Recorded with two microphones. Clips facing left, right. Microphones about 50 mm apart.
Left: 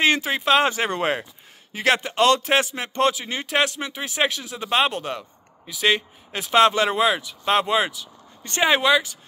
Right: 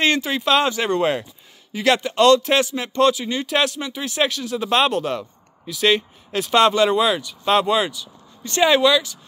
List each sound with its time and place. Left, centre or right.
0.0 s a man's voice: left
8.5 s speech: left